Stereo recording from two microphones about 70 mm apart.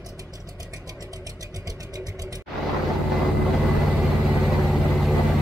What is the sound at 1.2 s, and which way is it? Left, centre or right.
Vehicle, right.